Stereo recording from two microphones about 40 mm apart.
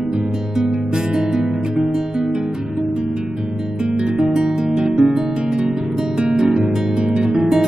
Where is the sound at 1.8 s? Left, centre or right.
Centre.